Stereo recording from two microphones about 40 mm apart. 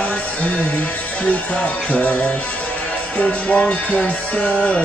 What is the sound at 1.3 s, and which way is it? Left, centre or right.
Music, left.